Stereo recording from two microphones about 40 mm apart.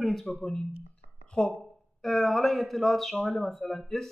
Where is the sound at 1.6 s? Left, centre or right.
Centre.